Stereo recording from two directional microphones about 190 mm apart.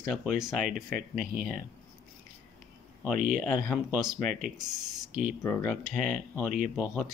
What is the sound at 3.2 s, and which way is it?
Speech, 45° right (ahead or behind).